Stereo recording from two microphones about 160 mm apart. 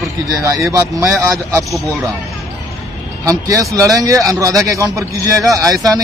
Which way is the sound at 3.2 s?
20° right (ahead or behind).